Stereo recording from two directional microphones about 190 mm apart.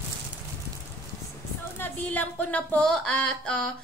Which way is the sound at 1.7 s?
10° left (ahead or behind).